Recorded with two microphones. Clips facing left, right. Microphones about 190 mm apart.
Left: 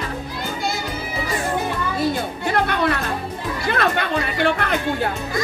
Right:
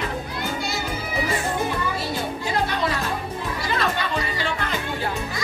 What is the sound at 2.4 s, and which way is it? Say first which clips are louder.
Music: left 5 dB; 60° left (ahead or behind).